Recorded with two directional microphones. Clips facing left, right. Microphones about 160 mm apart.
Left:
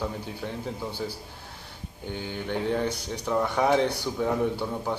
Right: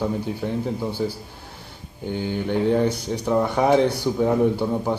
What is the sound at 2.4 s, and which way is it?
Speech, 15° right (ahead or behind).